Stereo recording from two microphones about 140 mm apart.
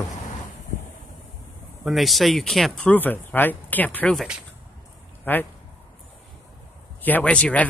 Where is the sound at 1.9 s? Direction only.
Centre (ahead or behind).